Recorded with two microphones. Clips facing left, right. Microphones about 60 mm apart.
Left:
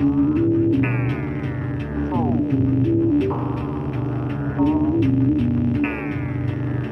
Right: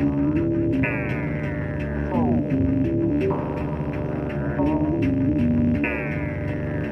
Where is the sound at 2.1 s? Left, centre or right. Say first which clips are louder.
Left 1 dB; right.